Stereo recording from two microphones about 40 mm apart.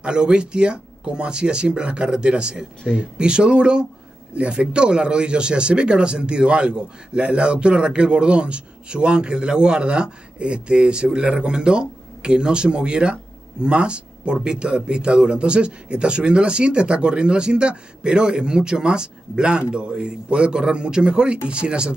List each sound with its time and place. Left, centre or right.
0.0 s speech: right